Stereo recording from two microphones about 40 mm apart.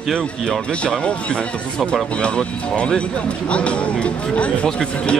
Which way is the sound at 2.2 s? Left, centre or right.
Left.